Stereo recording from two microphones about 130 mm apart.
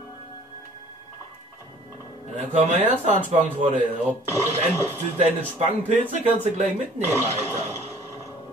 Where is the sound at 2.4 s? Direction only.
60° right (ahead or behind).